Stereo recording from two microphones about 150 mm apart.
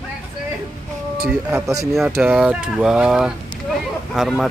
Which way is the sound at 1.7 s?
20° right (ahead or behind).